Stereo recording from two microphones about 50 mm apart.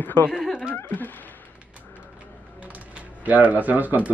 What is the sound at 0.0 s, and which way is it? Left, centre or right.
Speech, left.